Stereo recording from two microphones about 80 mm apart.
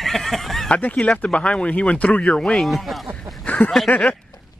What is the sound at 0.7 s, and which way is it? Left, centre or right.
Speech, left.